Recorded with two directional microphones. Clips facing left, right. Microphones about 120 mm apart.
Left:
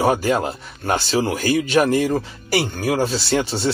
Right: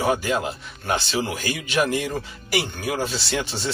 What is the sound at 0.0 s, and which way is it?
Speech, 40° left (ahead or behind).